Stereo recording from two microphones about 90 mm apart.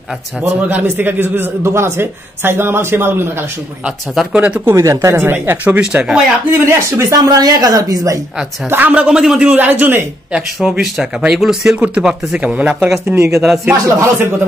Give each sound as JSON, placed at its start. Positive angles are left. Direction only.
{"t": 0.4, "sound": "a man's voice", "side_deg": -20}
{"t": 3.8, "sound": "speech", "side_deg": -5}
{"t": 4.6, "sound": "a man's voice", "side_deg": -35}
{"t": 5.8, "sound": "speech", "side_deg": -10}
{"t": 6.5, "sound": "a man's voice", "side_deg": -25}
{"t": 7.0, "sound": "a woman's voice", "side_deg": -40}
{"t": 8.6, "sound": "speech", "side_deg": -20}
{"t": 10.3, "sound": "speech", "side_deg": -10}
{"t": 13.0, "sound": "a man's voice", "side_deg": -30}